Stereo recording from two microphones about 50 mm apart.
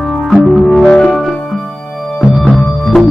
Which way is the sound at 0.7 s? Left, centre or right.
Centre.